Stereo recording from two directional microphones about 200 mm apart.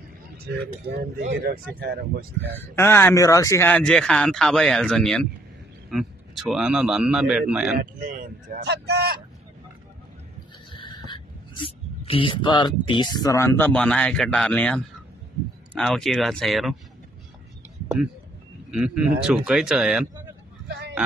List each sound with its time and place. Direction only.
0.4 s a man's voice: 50° right (ahead or behind)
2.6 s a man's voice: 10° left (ahead or behind)
3.7 s a man's voice: 5° left (ahead or behind)
7.8 s a man's voice: 45° right (ahead or behind)
10.7 s a sound: 25° left (ahead or behind)
11.1 s a man's voice: 25° left (ahead or behind); by 16.7 s centre (ahead or behind)
18.7 s a man's voice: 5° right (ahead or behind)